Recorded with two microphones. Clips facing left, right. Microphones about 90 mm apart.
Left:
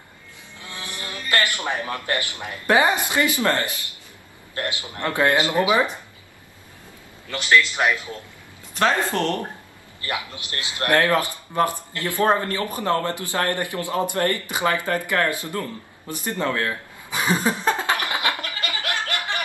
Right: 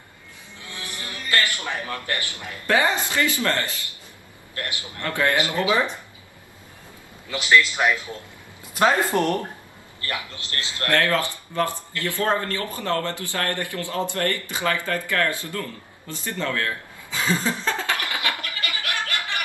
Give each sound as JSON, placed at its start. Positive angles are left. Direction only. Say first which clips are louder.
{"t": 0.7, "sound": "music", "louder": "left 2 dB", "side_deg": 20}
{"t": 1.9, "sound": "speech", "louder": "left 3 dB", "side_deg": 20}
{"t": 7.2, "sound": "a man's voice", "louder": "even", "side_deg": -5}
{"t": 7.5, "sound": "speech", "louder": "even", "side_deg": 10}
{"t": 8.7, "sound": "speech", "louder": "right 1 dB", "side_deg": -15}
{"t": 9.9, "sound": "a man's voice", "louder": "left 2 dB", "side_deg": 20}
{"t": 18.6, "sound": "a sound", "louder": "left 2 dB", "side_deg": 25}